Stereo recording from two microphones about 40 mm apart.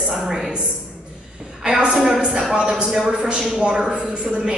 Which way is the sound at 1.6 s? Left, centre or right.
Centre.